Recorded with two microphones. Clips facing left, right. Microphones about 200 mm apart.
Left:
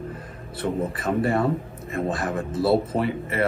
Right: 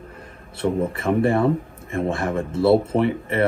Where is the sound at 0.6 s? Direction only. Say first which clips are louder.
Right 4 dB; 30° right (ahead or behind).